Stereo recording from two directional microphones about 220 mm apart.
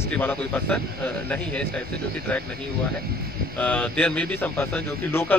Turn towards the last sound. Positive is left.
turn(degrees=10)  # may be behind; listen again after turning